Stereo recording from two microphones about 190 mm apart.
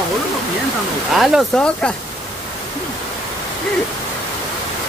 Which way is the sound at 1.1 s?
Centre (ahead or behind).